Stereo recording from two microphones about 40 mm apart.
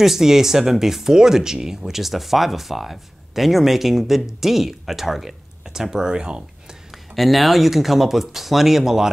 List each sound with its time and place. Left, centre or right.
0.0 s speech: centre
7.2 s speech: centre